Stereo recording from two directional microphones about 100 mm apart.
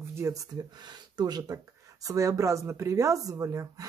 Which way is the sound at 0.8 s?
45° right (ahead or behind).